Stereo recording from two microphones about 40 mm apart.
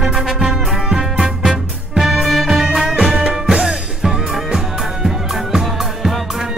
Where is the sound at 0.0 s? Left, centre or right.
Centre.